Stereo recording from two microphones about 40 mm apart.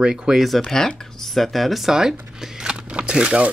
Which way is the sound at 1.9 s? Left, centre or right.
Centre.